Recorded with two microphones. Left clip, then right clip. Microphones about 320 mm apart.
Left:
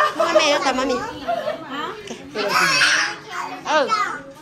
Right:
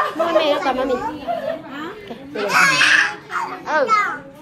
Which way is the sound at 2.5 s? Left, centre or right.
Right.